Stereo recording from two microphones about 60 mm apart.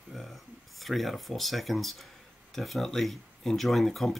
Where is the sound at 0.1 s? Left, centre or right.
Centre.